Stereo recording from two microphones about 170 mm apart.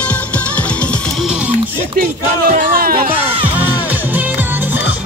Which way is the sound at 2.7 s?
55° right (ahead or behind).